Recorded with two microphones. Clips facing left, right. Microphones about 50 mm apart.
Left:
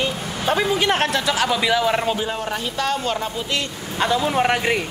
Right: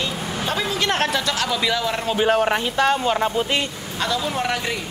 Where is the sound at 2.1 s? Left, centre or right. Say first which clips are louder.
Right 7 dB; right.